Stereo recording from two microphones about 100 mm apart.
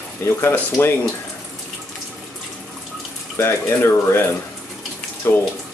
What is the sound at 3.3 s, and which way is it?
Speech, 25° left (ahead or behind).